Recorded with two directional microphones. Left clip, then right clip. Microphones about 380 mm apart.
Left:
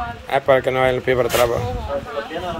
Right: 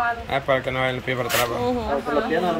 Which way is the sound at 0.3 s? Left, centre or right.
Centre.